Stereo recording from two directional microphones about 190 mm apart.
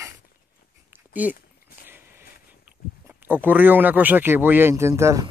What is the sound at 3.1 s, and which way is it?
Speech, 10° right (ahead or behind).